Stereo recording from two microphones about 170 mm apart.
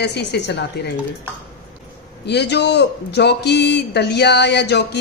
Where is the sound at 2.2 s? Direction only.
80° left.